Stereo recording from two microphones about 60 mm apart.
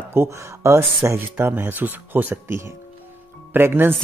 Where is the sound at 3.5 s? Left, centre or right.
Right.